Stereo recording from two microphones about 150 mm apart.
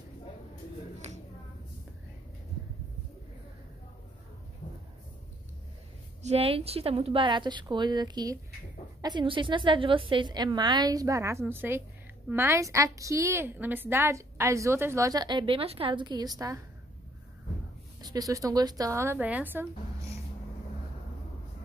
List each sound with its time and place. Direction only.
1.0 s a sound: 45° right (ahead or behind)
6.2 s a woman's voice: 40° right (ahead or behind); by 16.6 s 20° right (ahead or behind)
18.0 s a woman's voice: 25° right (ahead or behind)